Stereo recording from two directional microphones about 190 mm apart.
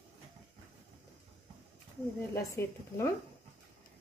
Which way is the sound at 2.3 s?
15° left (ahead or behind).